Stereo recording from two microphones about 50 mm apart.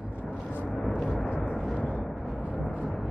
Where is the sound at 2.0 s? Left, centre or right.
Centre.